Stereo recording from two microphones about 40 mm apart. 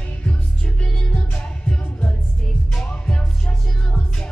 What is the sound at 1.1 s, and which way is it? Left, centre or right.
Music, left.